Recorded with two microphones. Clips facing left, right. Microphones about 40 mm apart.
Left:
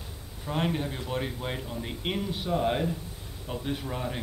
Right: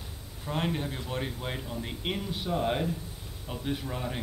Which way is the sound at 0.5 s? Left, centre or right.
Centre.